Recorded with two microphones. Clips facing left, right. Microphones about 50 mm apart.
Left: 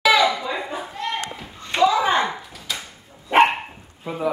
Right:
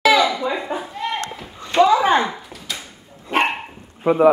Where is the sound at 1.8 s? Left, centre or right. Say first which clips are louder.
Right 1 dB; right.